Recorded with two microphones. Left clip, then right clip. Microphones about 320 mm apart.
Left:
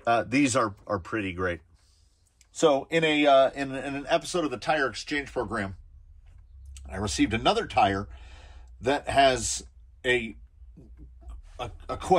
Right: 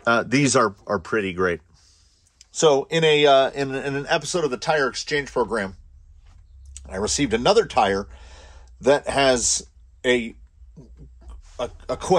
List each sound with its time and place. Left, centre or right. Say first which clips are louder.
0.0 s a man's voice: right 4 dB; right
6.7 s speech: right 7 dB; right
11.2 s oink: right 8 dB; right